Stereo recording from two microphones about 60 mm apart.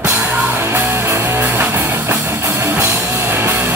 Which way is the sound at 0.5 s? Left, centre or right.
Right.